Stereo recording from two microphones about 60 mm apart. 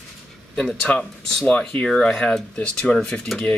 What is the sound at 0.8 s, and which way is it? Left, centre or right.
Speech, centre.